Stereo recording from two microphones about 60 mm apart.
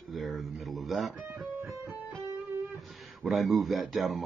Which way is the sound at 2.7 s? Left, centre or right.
Centre.